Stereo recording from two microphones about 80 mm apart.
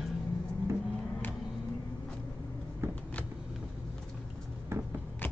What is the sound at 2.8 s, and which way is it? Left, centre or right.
Vehicle, right.